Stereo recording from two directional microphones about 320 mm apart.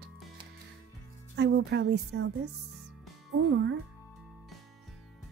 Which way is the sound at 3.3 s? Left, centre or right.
Right.